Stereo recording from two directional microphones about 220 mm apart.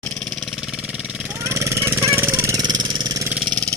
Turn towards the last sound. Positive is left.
turn(degrees=-20)  # may be behind; listen again after turning